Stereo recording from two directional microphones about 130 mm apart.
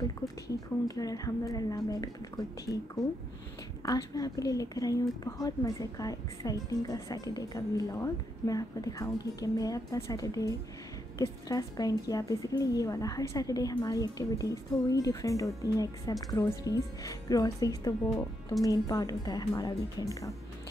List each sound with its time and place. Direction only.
0.8 s a woman's voice: 30° left (ahead or behind)
3.8 s a woman's voice: 30° left (ahead or behind)